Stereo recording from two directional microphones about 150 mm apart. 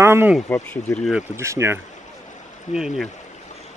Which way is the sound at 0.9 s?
Centre (ahead or behind).